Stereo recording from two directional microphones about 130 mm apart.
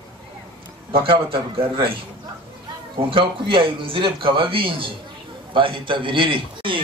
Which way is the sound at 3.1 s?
40° right (ahead or behind).